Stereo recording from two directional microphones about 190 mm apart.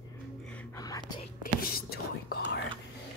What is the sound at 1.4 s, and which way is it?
Whispering, 50° left (ahead or behind).